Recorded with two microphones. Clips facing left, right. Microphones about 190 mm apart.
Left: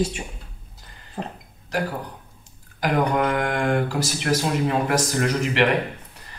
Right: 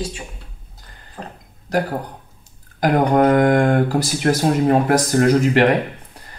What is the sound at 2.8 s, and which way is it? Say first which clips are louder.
Speech: right 6 dB; 45° right (ahead or behind).